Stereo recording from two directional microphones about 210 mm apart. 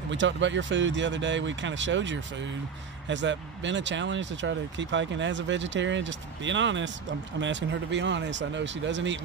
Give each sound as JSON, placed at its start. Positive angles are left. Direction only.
{"t": 0.1, "sound": "speech", "side_deg": -60}